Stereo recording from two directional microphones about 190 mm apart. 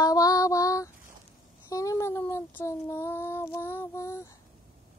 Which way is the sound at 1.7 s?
15° left (ahead or behind).